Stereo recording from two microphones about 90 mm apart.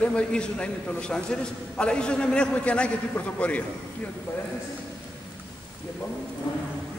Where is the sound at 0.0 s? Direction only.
10° left (ahead or behind).